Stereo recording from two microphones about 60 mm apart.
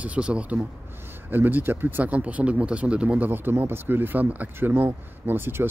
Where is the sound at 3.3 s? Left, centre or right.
Right.